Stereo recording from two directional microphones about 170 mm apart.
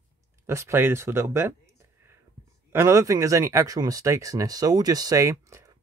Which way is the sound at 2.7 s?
15° right (ahead or behind).